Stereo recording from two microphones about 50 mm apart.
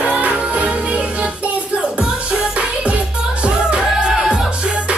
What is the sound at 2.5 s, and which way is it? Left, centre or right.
Music, right.